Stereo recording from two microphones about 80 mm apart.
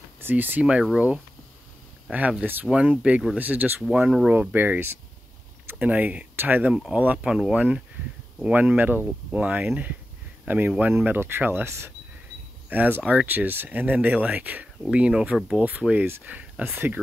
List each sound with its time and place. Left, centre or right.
0.2 s speech: right
0.9 s speech: centre
3.3 s speech: right
6.7 s speech: centre; by 17.0 s right